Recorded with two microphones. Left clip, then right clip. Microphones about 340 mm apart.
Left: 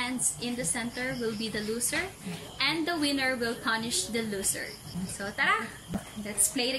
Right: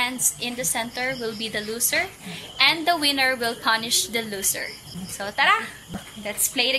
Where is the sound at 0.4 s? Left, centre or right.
Centre.